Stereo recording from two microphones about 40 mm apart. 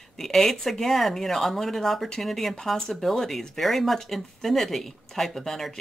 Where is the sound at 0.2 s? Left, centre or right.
Centre.